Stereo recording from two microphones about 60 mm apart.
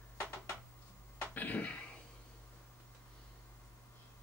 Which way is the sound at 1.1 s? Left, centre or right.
Left.